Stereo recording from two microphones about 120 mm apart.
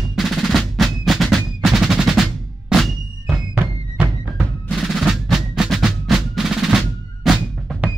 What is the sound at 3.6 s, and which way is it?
Music, 15° right (ahead or behind).